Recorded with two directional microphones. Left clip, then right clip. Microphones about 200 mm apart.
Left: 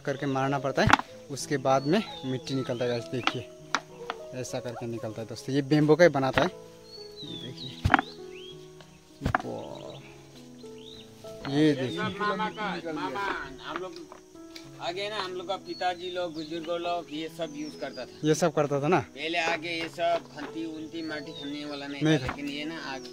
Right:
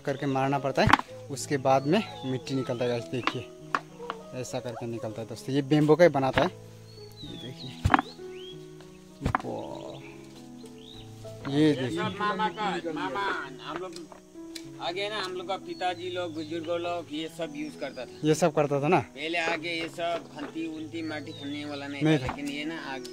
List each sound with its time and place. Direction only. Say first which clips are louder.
0.0 s speech: right 1 dB; centre (ahead or behind)
4.3 s speech: right 1 dB; centre (ahead or behind)
7.4 s speech: right 1 dB; centre (ahead or behind)
9.4 s a sound: right 1 dB; centre (ahead or behind)
11.5 s speech: even; centre (ahead or behind)
12.0 s speech: right 1 dB; 50° right (ahead or behind)
14.8 s speech: right 1 dB; centre (ahead or behind)